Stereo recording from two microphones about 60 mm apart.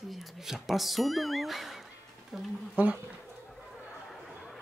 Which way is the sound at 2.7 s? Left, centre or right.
Centre.